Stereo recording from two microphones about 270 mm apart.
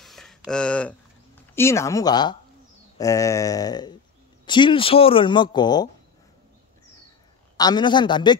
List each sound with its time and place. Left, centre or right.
0.0 s a sound: centre
1.5 s speech: centre
7.5 s speech: centre